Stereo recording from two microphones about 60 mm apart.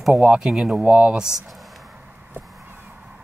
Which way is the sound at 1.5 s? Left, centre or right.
Centre.